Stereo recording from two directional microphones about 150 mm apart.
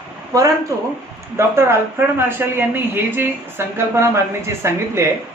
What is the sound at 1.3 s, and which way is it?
Speech, 15° right (ahead or behind).